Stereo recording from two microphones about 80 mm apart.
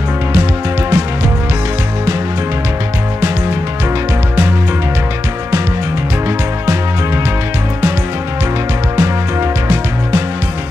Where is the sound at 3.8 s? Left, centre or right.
Right.